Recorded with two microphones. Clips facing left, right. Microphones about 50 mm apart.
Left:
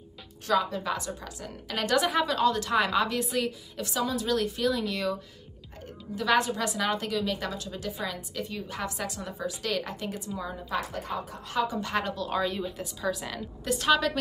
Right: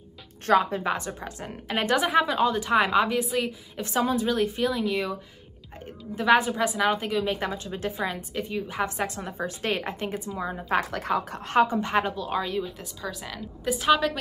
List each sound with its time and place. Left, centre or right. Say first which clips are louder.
0.5 s a woman's voice: right 5 dB; right
3.2 s speech: right 3 dB; centre
3.8 s a woman's voice: right 5 dB; right; by 5.1 s centre
6.1 s a woman's voice: right 4 dB; right
7.1 s a woman's voice: right 3 dB; right
8.5 s a woman's voice: right 7 dB; centre
8.8 s a woman's voice: right 4 dB; right
10.7 s a woman's voice: right 7 dB; right
11.4 s a woman's voice: right 7 dB; right
11.9 s a woman's voice: right 4 dB; centre